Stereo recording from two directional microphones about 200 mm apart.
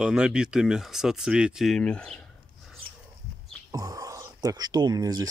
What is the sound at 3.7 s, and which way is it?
Speech, 15° right (ahead or behind).